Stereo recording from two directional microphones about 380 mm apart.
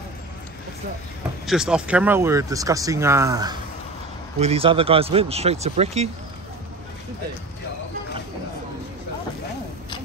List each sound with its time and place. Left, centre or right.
1.4 s speech: centre